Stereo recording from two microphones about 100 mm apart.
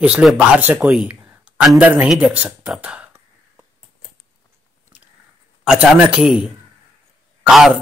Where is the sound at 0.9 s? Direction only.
10° right (ahead or behind).